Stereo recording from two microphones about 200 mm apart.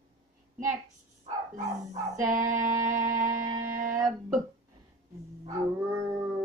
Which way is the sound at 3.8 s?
15° right (ahead or behind).